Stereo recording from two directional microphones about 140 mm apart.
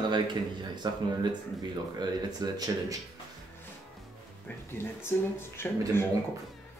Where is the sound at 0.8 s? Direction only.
30° right (ahead or behind).